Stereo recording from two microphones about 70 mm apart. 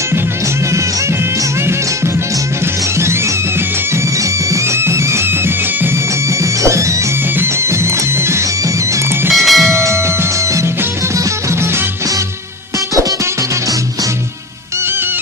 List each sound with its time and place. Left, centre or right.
4.5 s music: right
9.3 s music: centre
9.7 s music: right